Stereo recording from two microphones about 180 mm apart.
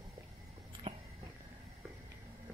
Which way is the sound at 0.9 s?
30° right (ahead or behind).